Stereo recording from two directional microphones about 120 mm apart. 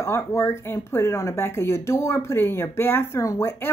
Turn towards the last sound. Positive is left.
turn(degrees=20)  # may be behind; listen again after turning